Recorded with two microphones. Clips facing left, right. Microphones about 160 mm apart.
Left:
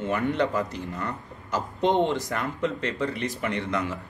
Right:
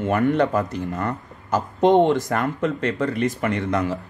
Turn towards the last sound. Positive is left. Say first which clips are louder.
# right 5 dB
turn(degrees=-45)  # may be behind; listen again after turning